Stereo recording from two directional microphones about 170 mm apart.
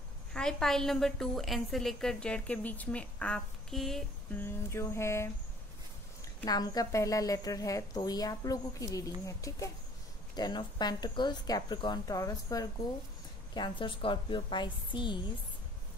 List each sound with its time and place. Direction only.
0.3 s a woman's voice: 5° left (ahead or behind)
4.4 s a sound: 15° left (ahead or behind)
6.2 s a woman's voice: 25° left (ahead or behind)